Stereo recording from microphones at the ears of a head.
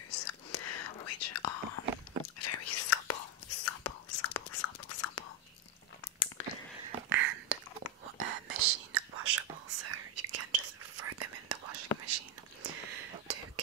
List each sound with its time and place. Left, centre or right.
0.1 s whispering: left
6.8 s a sound: right
8.0 s whispering: right